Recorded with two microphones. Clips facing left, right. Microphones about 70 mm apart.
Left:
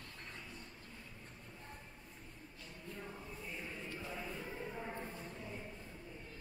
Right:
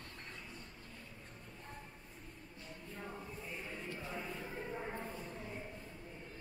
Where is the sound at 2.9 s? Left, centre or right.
Centre.